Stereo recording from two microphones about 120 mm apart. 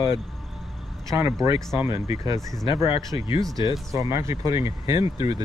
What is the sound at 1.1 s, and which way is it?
Speech, 20° right (ahead or behind).